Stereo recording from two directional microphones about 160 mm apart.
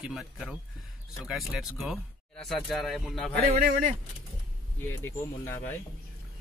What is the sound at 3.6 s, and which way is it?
Speech, 60° right (ahead or behind).